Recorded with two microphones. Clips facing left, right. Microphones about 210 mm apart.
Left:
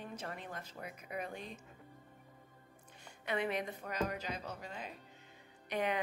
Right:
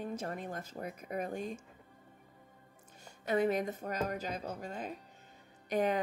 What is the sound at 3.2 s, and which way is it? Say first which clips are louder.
Speech: right 6 dB; 45° right (ahead or behind).